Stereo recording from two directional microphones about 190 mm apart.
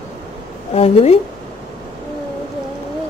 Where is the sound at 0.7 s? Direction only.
35° left (ahead or behind).